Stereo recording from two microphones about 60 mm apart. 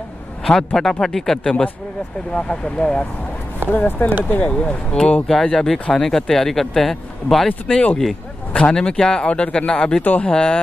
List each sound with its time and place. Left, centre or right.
1.0 s speech: centre
3.7 s speech: left
4.5 s speech: centre
5.3 s speech: centre
7.4 s speech: centre
10.0 s speech: left
10.3 s speech: centre